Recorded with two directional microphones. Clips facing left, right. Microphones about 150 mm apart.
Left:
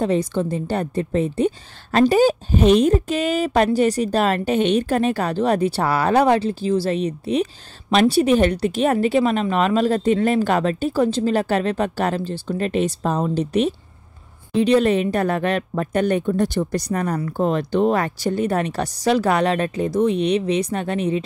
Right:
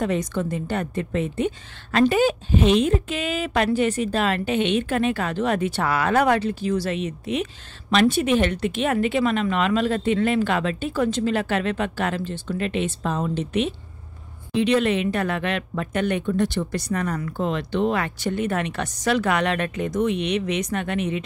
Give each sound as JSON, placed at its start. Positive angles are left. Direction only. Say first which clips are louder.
{"t": 0.0, "sound": "a woman's voice", "louder": "left 4 dB", "side_deg": 30}